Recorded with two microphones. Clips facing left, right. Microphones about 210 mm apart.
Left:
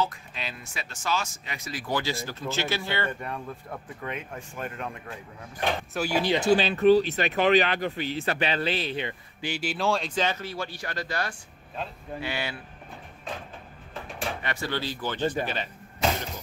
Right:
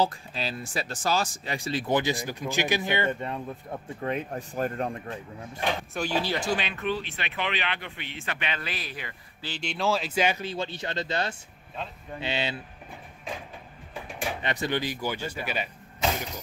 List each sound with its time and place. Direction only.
0.0 s speech: 35° right (ahead or behind)
4.0 s speech: 35° right (ahead or behind)
5.9 s speech: 10° left (ahead or behind)
6.6 s speech: 35° left (ahead or behind)
9.4 s speech: 10° left (ahead or behind); by 12.5 s 20° right (ahead or behind)
14.4 s speech: 20° right (ahead or behind)